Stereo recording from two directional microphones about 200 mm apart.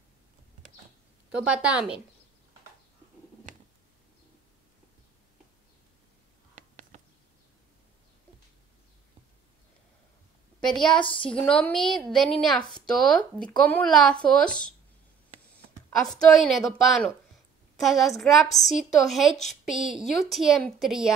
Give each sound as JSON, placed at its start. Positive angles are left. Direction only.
{"t": 1.3, "sound": "a woman's voice", "side_deg": -5}
{"t": 6.5, "sound": "a sound", "side_deg": -35}
{"t": 10.7, "sound": "a woman's voice", "side_deg": 5}
{"t": 16.0, "sound": "a woman's voice", "side_deg": 0}